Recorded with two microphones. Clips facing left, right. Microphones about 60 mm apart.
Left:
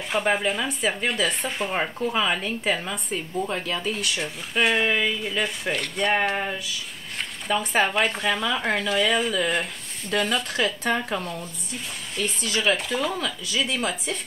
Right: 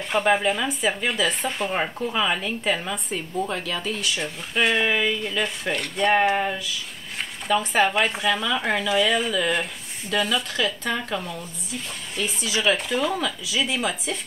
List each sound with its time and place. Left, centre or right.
0.1 s speech: centre
8.3 s speech: centre
8.5 s speech: centre
10.6 s speech: left
11.1 s speech: centre